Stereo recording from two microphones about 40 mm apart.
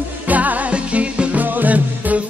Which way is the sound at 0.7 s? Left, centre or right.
Right.